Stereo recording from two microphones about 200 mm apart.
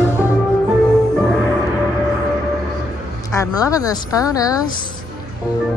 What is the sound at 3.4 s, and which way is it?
Speech, 15° left (ahead or behind).